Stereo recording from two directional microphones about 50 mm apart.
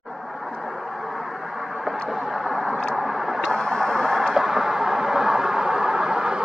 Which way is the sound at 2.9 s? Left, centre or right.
Centre.